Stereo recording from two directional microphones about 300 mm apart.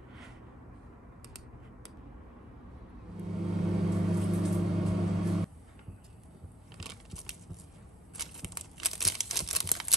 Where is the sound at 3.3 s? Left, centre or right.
Centre.